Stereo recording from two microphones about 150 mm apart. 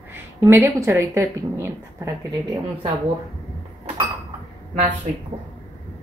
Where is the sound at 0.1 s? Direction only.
15° right (ahead or behind).